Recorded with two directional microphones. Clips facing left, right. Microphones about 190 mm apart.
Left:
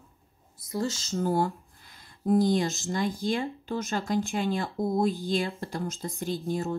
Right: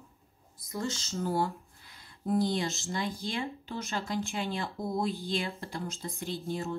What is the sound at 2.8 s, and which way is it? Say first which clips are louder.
A woman's voice: left 6 dB; 45° left (ahead or behind).